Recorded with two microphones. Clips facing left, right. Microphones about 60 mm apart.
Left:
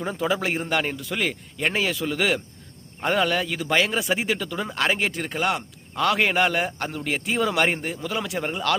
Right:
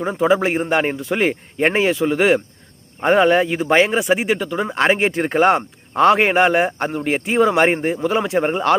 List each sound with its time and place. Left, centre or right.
0.0 s speech: right